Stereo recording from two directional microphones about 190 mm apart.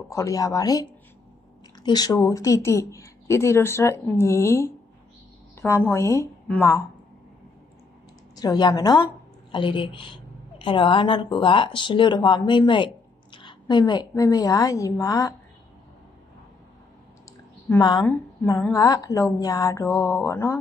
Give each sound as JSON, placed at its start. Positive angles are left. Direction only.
{"t": 0.1, "sound": "speech", "side_deg": 15}
{"t": 5.9, "sound": "speech", "side_deg": 15}
{"t": 8.4, "sound": "a woman's voice", "side_deg": 20}
{"t": 17.6, "sound": "a woman's voice", "side_deg": 20}